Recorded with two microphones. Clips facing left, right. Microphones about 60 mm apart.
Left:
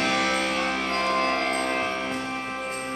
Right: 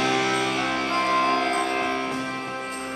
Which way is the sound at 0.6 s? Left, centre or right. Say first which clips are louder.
Right 1 dB; right.